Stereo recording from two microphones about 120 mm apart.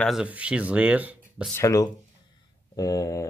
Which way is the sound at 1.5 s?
25° left (ahead or behind).